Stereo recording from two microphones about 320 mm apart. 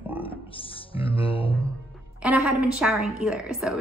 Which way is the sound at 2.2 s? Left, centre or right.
Centre.